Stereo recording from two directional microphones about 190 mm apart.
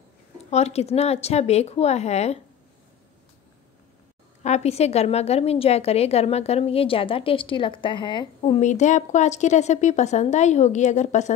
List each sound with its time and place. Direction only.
0.5 s a woman's voice: 35° left (ahead or behind)
4.4 s a woman's voice: 35° left (ahead or behind)